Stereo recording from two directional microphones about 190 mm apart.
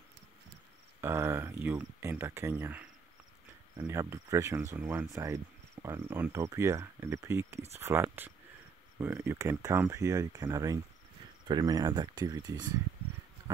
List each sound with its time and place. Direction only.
1.0 s speech: 15° right (ahead or behind)